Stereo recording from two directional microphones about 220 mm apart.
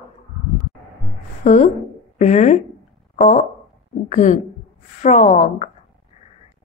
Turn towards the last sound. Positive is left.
turn(degrees=35)  # may be behind; listen again after turning